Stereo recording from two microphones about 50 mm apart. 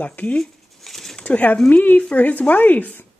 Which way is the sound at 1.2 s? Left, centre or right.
Left.